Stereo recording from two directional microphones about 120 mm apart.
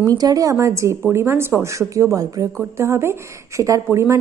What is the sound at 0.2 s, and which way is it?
A woman's voice, 30° right (ahead or behind).